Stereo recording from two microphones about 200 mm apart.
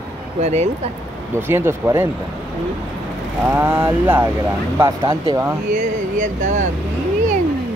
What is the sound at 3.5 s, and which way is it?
Speech, 10° right (ahead or behind).